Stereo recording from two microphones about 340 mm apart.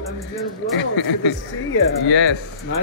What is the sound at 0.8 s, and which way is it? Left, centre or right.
Speech, left.